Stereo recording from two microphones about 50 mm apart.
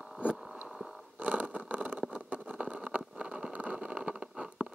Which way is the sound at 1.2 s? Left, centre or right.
Right.